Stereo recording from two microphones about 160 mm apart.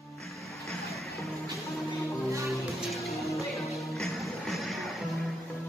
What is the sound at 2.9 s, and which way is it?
Music, centre (ahead or behind).